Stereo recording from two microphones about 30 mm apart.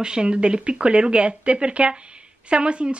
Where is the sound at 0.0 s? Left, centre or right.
Right.